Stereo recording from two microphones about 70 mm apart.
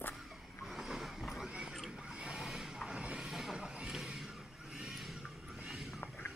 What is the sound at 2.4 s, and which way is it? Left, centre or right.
Vehicle, centre.